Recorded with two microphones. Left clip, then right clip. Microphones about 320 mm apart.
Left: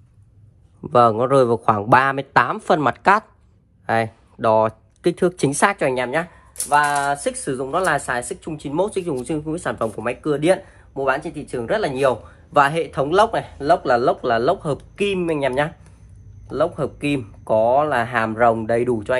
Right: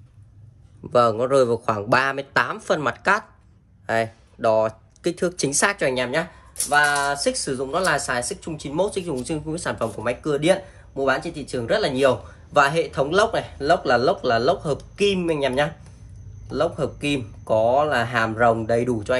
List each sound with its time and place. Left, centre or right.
0.8 s speech: centre